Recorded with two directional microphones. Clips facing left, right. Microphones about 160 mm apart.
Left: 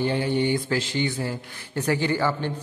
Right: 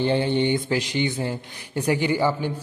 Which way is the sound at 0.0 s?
25° right (ahead or behind).